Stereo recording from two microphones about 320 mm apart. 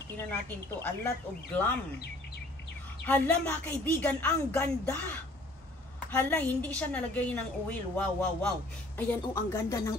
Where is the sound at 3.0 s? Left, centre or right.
Centre.